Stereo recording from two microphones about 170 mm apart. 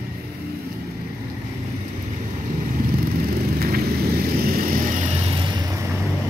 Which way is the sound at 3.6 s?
65° right (ahead or behind).